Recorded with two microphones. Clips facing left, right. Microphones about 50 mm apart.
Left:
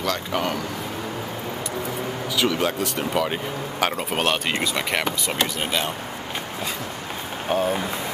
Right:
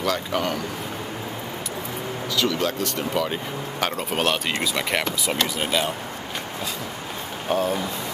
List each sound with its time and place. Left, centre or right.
0.0 s speech: centre
2.3 s speech: centre
5.6 s speech: centre
7.4 s speech: centre